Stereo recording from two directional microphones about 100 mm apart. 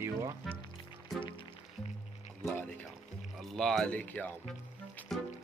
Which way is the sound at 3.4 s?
5° left (ahead or behind).